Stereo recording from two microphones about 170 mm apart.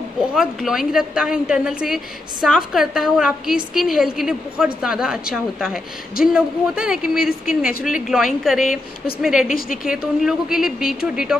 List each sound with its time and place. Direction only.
0.2 s a woman's voice: 5° right (ahead or behind)